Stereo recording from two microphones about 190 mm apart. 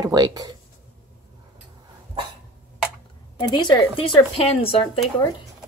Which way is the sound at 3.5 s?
20° left (ahead or behind).